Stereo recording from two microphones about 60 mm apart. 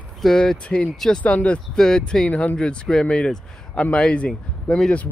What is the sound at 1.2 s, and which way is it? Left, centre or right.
Speech, left.